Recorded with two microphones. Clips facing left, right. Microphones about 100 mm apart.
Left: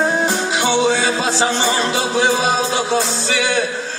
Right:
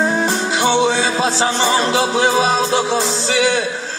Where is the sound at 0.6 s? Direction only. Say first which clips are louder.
Right 1 dB; 35° right (ahead or behind).